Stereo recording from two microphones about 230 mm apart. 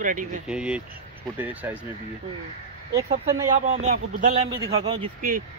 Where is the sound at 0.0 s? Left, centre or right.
Right.